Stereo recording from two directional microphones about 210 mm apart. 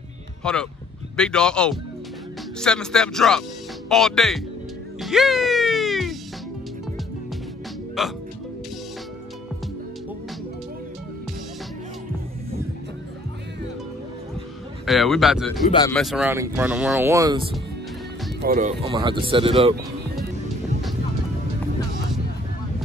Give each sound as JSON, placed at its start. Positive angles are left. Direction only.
{"t": 0.4, "sound": "speech", "side_deg": 5}
{"t": 5.0, "sound": "music", "side_deg": 0}
{"t": 8.0, "sound": "speech", "side_deg": 0}
{"t": 14.9, "sound": "speech", "side_deg": 0}
{"t": 16.3, "sound": "speech", "side_deg": -10}
{"t": 18.4, "sound": "speech", "side_deg": -40}
{"t": 18.8, "sound": "speech", "side_deg": -25}